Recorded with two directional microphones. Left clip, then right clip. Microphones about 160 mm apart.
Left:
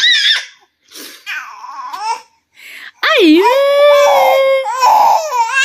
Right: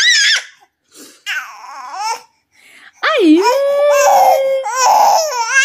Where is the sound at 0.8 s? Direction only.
Centre (ahead or behind).